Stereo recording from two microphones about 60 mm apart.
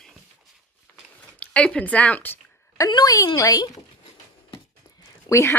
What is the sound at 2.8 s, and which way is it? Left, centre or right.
Speech, left.